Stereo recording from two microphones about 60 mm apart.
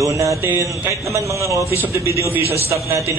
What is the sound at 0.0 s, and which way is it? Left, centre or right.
A man's voice, right.